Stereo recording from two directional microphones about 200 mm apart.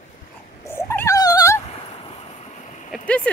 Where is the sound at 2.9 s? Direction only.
5° left (ahead or behind).